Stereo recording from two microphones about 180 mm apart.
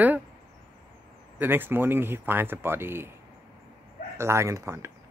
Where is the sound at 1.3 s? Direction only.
10° right (ahead or behind).